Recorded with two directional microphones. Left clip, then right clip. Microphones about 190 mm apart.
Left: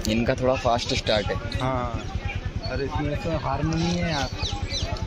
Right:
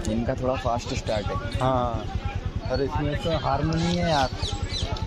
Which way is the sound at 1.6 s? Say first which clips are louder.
Right 6 dB; 15° right (ahead or behind).